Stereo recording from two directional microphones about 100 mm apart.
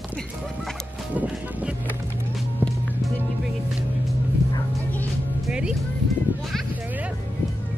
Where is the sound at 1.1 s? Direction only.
15° right (ahead or behind).